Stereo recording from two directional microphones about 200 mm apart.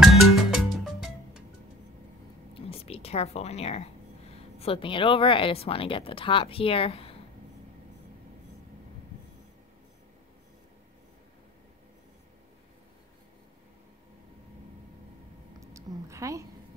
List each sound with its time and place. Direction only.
0.0 s music: centre (ahead or behind)
2.5 s speech: 30° left (ahead or behind)
15.6 s a sound: 15° right (ahead or behind)